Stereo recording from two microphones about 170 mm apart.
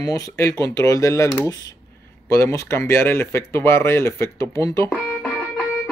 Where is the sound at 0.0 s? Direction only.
20° left (ahead or behind).